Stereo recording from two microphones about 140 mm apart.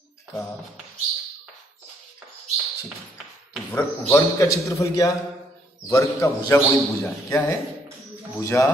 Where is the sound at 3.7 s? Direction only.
15° left (ahead or behind).